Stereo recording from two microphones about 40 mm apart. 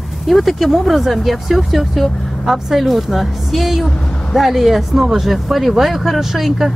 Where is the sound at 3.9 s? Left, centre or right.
Left.